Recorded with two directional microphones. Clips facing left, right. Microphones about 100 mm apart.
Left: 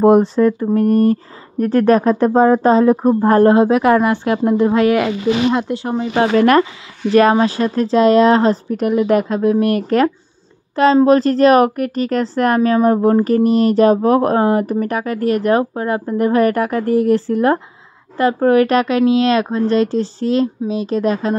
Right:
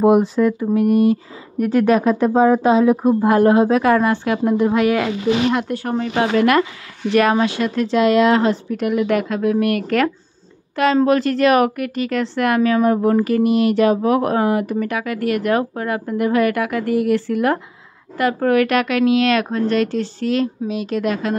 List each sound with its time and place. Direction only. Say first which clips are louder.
0.4 s speech: left 2 dB; 40° left (ahead or behind)
0.8 s speech: left 1 dB; 10° right (ahead or behind)
1.9 s speech: left 4 dB; 35° left (ahead or behind)
3.6 s speech: left 2 dB; 20° left (ahead or behind)
6.1 s speech: left 4 dB; 40° left (ahead or behind)
11.1 s speech: left 4 dB; 35° left (ahead or behind)